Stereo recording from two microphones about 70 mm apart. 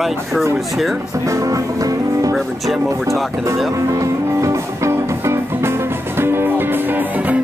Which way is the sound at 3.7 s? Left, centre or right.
Right.